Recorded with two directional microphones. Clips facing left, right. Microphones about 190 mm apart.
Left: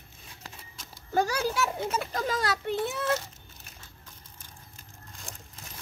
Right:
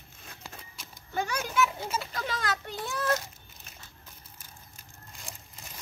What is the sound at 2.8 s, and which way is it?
Speech, 25° left (ahead or behind).